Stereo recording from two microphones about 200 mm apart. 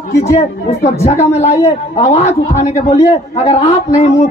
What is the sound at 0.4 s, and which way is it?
Speech, 35° left (ahead or behind).